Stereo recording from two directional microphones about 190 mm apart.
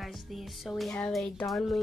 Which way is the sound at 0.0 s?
Centre (ahead or behind).